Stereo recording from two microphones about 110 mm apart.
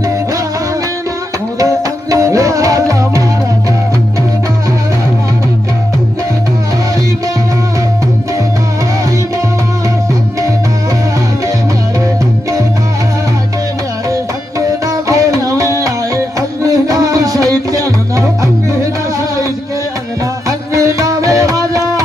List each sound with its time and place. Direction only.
1.6 s music: 30° right (ahead or behind)
14.9 s music: 30° right (ahead or behind)
20.4 s music: 30° right (ahead or behind)